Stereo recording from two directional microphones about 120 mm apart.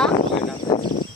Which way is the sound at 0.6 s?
40° left (ahead or behind).